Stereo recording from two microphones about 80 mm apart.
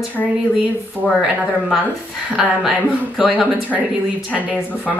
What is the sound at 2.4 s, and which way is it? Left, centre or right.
A woman's voice, centre.